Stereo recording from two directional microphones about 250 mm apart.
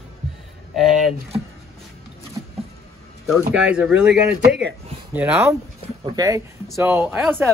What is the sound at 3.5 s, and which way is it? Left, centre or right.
Speech, centre.